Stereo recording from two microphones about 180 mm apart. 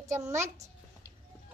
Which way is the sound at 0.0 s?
15° right (ahead or behind).